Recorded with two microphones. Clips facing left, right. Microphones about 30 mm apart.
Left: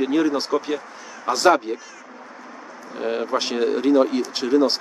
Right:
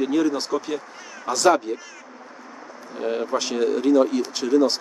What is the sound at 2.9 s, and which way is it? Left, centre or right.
Speech, left.